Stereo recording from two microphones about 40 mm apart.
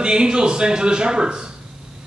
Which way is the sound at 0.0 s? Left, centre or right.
Right.